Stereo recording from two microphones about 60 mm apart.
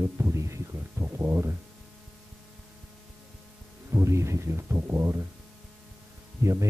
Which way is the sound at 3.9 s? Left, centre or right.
Right.